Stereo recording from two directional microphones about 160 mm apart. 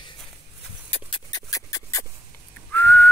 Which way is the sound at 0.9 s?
25° left (ahead or behind).